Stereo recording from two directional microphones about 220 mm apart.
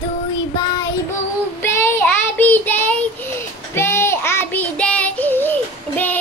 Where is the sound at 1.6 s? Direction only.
10° left (ahead or behind).